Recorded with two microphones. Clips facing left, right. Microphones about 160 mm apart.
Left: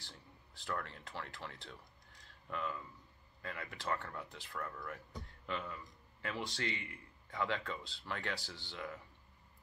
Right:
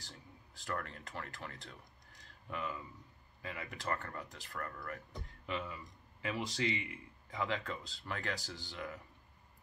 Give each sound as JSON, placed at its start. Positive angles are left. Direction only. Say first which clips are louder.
{"t": 0.1, "sound": "speech", "louder": "right 2 dB", "side_deg": 0}
{"t": 2.2, "sound": "a sound", "louder": "even", "side_deg": -5}
{"t": 3.4, "sound": "speech", "louder": "even", "side_deg": 0}